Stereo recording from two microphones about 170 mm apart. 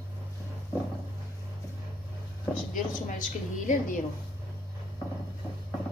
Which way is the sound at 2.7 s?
50° left (ahead or behind).